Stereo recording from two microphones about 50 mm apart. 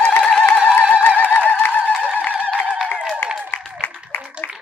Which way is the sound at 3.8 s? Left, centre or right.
Left.